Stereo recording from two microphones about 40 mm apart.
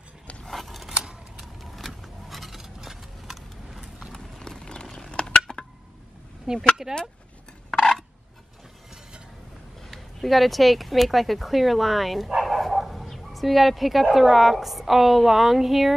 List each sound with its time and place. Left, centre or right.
0.5 s scissors: centre
1.4 s vehicle: centre
2.0 s a sound: centre
4.1 s clip-clop: centre
4.9 s a sound: centre
6.5 s speech: right
9.8 s speech: centre
12.4 s bow-wow: centre
14.1 s a woman's voice: centre